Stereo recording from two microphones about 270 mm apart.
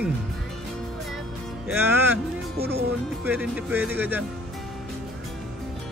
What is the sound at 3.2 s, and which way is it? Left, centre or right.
Speech, centre.